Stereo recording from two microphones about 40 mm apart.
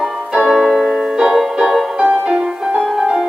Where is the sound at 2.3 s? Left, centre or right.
Centre.